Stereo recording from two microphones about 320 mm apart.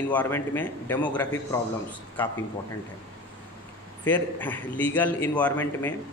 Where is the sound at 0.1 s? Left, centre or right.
Centre.